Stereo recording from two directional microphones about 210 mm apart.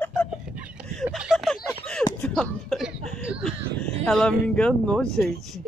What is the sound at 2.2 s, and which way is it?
Speech, centre (ahead or behind).